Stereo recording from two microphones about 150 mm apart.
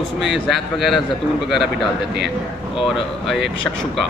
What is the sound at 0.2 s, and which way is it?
Speech, centre (ahead or behind).